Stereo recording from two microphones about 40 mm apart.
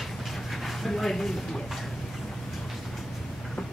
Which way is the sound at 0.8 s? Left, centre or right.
Centre.